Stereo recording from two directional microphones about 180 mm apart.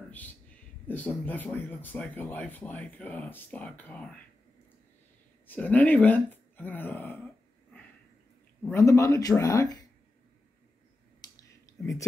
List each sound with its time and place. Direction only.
0.8 s speech: 10° left (ahead or behind)
5.5 s speech: 10° left (ahead or behind)
8.6 s speech: 15° left (ahead or behind)
11.3 s a sound: 20° left (ahead or behind)